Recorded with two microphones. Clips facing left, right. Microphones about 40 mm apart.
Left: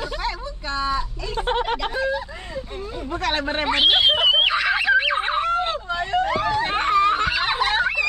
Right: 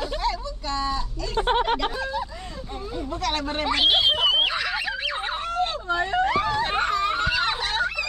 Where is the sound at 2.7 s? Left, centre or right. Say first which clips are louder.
Right 1 dB; centre.